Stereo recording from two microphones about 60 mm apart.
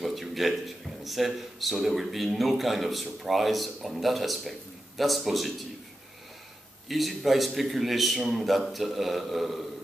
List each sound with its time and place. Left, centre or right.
0.0 s a man's voice: centre
6.9 s a man's voice: centre